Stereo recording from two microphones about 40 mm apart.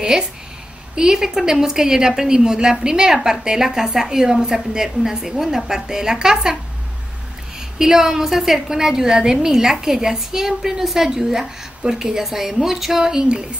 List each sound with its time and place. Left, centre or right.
0.1 s a woman's voice: centre
7.8 s a woman's voice: centre